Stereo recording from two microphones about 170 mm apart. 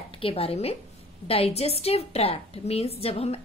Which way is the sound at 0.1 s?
30° left (ahead or behind).